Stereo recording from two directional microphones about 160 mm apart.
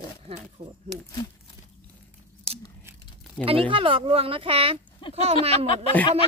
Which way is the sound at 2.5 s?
40° right (ahead or behind).